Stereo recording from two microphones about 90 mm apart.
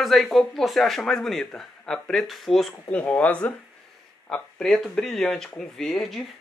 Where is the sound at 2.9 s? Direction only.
20° left (ahead or behind).